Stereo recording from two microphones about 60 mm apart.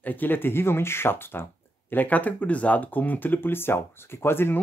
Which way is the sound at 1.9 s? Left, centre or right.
Left.